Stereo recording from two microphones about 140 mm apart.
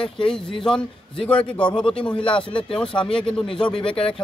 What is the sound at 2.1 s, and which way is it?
Speech, 35° left (ahead or behind).